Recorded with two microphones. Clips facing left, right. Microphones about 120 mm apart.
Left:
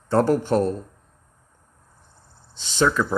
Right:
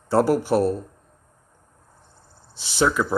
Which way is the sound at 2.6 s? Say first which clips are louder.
Even; 10° right (ahead or behind).